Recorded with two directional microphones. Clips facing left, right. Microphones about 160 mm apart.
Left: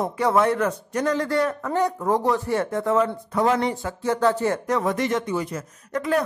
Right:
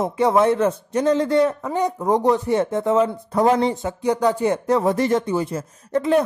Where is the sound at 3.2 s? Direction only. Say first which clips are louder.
Right 4 dB; 35° right (ahead or behind).